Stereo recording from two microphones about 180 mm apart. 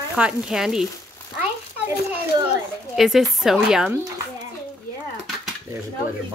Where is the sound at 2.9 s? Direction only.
Centre (ahead or behind).